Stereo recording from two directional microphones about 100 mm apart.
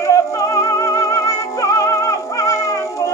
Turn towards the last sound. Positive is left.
turn(degrees=30)  # may be behind; listen again after turning